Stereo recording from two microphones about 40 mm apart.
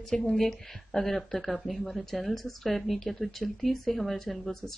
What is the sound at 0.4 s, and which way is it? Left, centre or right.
Speech, centre.